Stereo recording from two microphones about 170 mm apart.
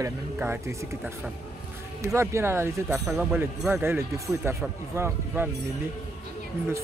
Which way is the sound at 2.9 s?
Centre (ahead or behind).